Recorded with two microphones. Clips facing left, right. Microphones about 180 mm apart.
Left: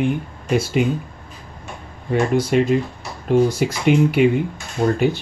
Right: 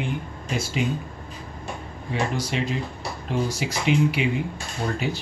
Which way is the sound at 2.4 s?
50° left (ahead or behind).